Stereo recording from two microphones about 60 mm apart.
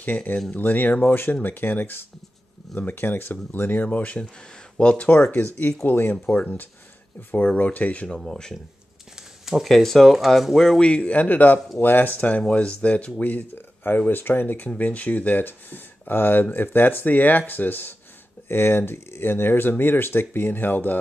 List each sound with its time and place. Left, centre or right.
0.0 s speech: left
9.1 s speech: centre
10.8 s speech: centre